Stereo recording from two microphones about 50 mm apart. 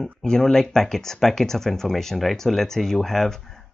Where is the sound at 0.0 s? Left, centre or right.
Centre.